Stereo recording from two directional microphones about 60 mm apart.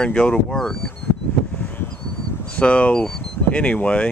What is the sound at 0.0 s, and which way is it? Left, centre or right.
Speech, centre.